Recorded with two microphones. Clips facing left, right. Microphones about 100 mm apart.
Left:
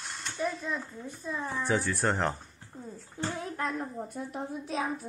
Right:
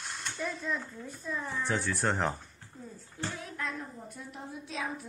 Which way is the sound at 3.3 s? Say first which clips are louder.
Left 5 dB; 40° left (ahead or behind).